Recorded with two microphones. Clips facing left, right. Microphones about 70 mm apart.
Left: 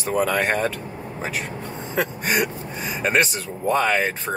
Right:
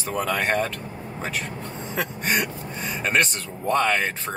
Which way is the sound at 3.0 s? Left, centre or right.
Centre.